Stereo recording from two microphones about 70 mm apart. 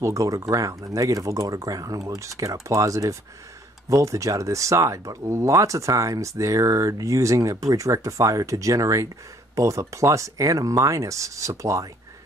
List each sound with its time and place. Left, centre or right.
0.0 s speech: right